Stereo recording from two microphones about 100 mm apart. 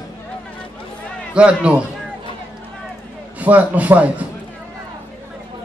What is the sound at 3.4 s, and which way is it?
Speech, 15° right (ahead or behind).